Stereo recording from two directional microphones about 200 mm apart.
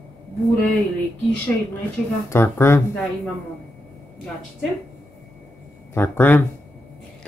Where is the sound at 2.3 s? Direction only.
15° left (ahead or behind).